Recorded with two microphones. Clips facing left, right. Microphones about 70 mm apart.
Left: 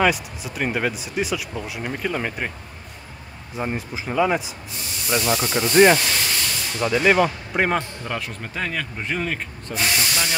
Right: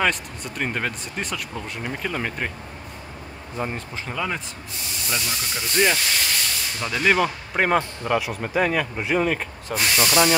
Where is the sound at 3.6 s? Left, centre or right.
Centre.